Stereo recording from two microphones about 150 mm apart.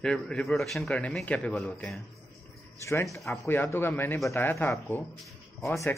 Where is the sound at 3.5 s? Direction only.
15° left (ahead or behind).